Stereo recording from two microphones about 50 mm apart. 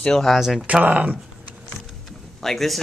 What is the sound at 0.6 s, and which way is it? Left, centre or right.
Speech, right.